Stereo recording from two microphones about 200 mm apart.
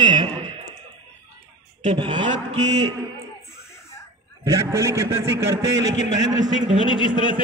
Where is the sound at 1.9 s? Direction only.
25° right (ahead or behind).